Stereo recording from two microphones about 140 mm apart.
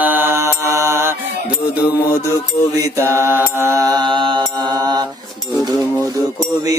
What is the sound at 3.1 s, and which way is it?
Mantra, 15° right (ahead or behind).